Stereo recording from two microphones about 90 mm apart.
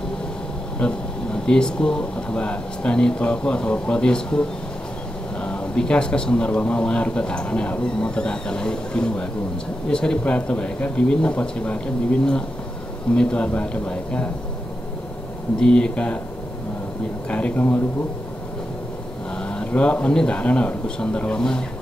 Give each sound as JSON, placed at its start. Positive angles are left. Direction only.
{"t": 0.7, "sound": "speech", "side_deg": 10}
{"t": 15.6, "sound": "speech", "side_deg": 10}
{"t": 17.3, "sound": "speech", "side_deg": 15}
{"t": 19.3, "sound": "speech", "side_deg": 10}